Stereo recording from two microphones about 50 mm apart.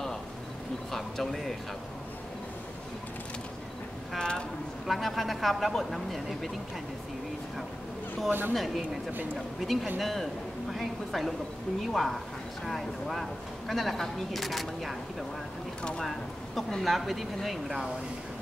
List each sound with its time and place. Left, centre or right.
0.9 s speech: centre
4.2 s speech: centre
4.8 s speech: centre
8.3 s speech: right
8.5 s a woman's voice: centre
16.0 s speech: centre